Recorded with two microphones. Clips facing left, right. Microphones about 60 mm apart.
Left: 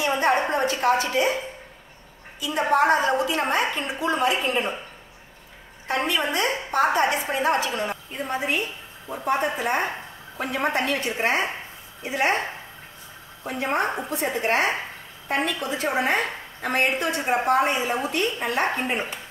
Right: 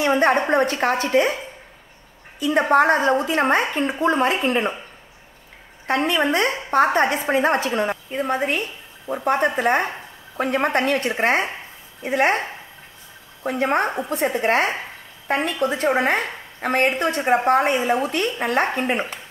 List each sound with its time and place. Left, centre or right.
0.2 s a woman's voice: right
2.4 s a woman's voice: right
5.9 s a woman's voice: right
13.6 s a woman's voice: right